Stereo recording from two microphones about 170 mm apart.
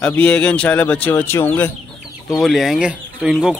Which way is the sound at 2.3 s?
Centre (ahead or behind).